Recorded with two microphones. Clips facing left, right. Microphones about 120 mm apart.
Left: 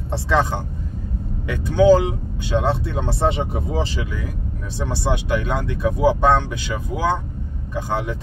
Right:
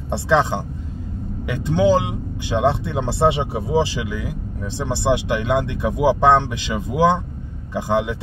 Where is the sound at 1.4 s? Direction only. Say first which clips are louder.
Left 3 dB; 20° right (ahead or behind).